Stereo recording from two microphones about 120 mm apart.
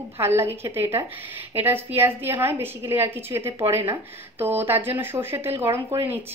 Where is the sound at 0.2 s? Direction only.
20° right (ahead or behind).